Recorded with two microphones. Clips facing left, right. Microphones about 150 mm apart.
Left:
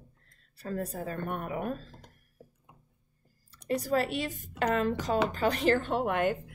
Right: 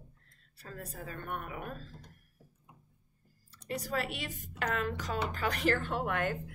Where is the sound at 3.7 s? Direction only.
35° left (ahead or behind); by 6.4 s 20° left (ahead or behind).